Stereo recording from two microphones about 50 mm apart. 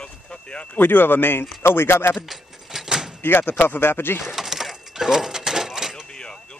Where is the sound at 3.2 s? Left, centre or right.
Left.